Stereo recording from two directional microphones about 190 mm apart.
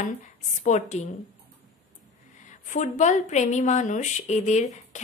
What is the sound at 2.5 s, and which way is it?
A woman's voice, 40° left (ahead or behind).